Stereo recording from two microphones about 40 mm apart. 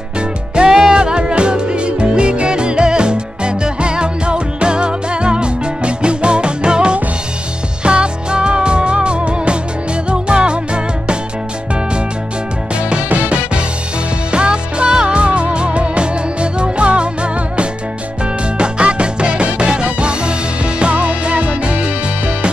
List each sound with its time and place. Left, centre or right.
0.6 s music: centre
13.1 s music: right